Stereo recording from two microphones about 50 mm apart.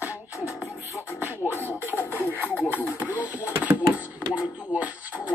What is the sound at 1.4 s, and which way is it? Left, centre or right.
Beatboxing, left.